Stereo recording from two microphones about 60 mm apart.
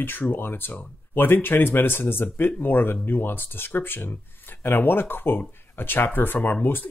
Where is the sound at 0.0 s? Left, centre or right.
Left.